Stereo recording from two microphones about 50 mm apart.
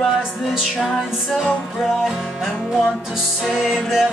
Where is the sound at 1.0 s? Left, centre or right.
Centre.